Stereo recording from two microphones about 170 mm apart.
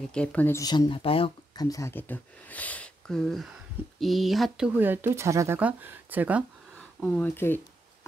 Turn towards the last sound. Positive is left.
turn(degrees=15)  # may be behind; listen again after turning